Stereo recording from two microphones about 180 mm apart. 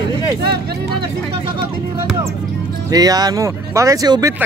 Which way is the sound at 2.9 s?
20° right (ahead or behind).